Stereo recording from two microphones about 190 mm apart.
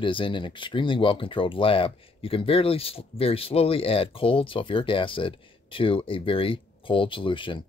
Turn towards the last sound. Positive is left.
turn(degrees=25)  # may be behind; listen again after turning